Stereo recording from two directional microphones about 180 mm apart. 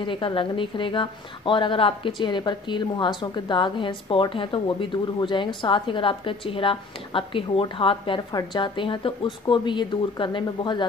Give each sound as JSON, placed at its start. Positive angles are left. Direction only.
{"t": 0.0, "sound": "a woman's voice", "side_deg": 30}